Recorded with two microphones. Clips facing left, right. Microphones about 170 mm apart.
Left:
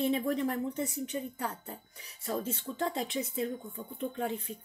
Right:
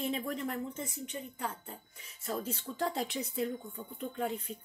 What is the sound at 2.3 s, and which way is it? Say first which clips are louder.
A woman's voice: left 2 dB; 25° left (ahead or behind).